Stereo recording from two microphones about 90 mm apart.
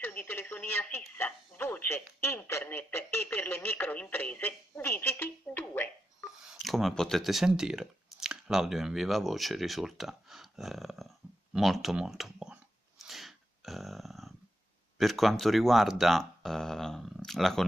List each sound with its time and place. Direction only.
0.0 s speech: 20° left (ahead or behind)
6.3 s speech: 5° right (ahead or behind)
13.0 s dog: centre (ahead or behind)
15.0 s speech: centre (ahead or behind)